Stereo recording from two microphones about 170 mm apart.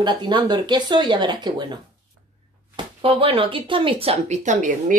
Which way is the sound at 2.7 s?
30° right (ahead or behind).